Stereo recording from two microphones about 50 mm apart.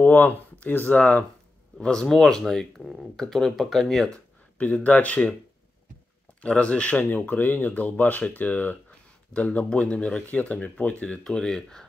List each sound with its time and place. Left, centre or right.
0.0 s speech: left
1.8 s speech: centre
4.6 s speech: left
6.4 s speech: left
11.2 s speech: centre